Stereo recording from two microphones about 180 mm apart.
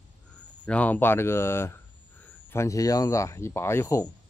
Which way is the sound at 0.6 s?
10° left (ahead or behind).